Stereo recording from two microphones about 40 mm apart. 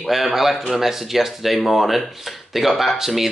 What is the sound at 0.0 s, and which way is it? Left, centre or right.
A man's voice, centre.